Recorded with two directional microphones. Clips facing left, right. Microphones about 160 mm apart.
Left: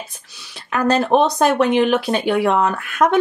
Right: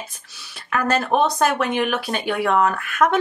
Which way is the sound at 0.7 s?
20° left (ahead or behind).